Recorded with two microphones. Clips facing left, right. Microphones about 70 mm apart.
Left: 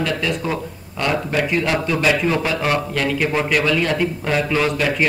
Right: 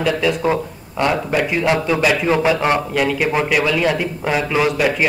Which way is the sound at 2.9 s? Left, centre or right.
Centre.